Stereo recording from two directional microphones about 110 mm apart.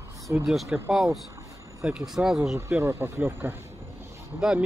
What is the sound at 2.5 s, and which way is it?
Speech, 25° right (ahead or behind).